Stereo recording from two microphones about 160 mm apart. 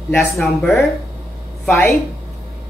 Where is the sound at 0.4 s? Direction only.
Centre (ahead or behind).